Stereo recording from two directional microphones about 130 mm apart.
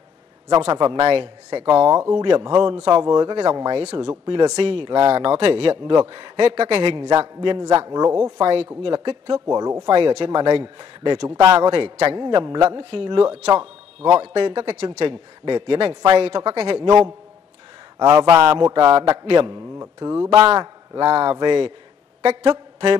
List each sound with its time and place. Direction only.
0.7 s a man's voice: 30° right (ahead or behind)
3.7 s a man's voice: 45° right (ahead or behind)
4.3 s a man's voice: 35° right (ahead or behind)
4.6 s a man's voice: 45° right (ahead or behind)
6.8 s a man's voice: 35° right (ahead or behind)
7.4 s mantra: 30° right (ahead or behind)
8.4 s a man's voice: 45° right (ahead or behind); by 9.8 s 25° right (ahead or behind)
9.8 s a man's voice: 40° right (ahead or behind)
11.3 s mantra: 25° right (ahead or behind)
11.6 s a man's voice: 40° right (ahead or behind)
17.9 s mantra: 25° right (ahead or behind)
19.3 s a man's voice: 35° right (ahead or behind)
19.8 s mantra: 25° right (ahead or behind)
20.5 s a man's voice: 35° right (ahead or behind)